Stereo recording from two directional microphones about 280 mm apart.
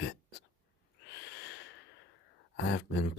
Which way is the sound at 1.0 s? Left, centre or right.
Left.